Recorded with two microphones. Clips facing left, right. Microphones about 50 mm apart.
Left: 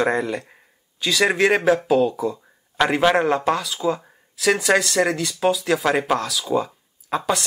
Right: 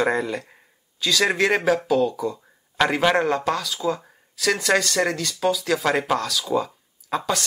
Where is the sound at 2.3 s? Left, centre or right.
Centre.